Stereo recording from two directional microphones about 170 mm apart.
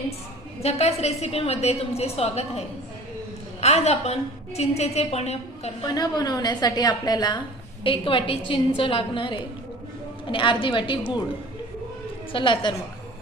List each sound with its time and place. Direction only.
0.6 s a woman's voice: 40° left (ahead or behind)
3.6 s a woman's voice: 40° left (ahead or behind)
5.9 s a woman's voice: 25° left (ahead or behind)
12.3 s a woman's voice: 30° left (ahead or behind)